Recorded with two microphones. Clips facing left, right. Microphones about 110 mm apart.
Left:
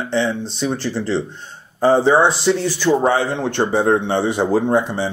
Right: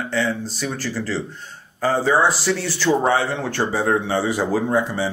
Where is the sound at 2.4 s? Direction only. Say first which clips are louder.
Left 5 dB; 20° left (ahead or behind).